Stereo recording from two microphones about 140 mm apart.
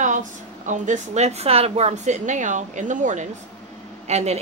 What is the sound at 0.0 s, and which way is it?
A woman's voice, 65° right (ahead or behind).